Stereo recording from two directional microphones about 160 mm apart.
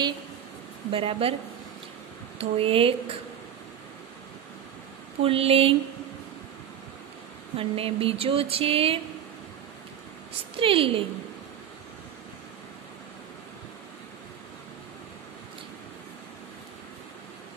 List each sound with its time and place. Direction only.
0.9 s speech: 35° right (ahead or behind)
2.3 s speech: 35° right (ahead or behind)
5.2 s speech: 35° right (ahead or behind)
7.5 s speech: 35° right (ahead or behind)
10.5 s speech: 35° right (ahead or behind)